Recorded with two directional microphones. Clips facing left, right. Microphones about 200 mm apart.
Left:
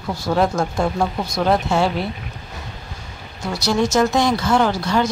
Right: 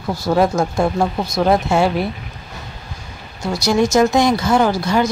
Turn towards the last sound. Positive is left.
turn(degrees=-10)  # may be behind; listen again after turning